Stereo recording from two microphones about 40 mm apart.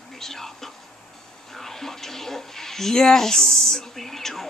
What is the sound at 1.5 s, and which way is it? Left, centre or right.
Speech, centre.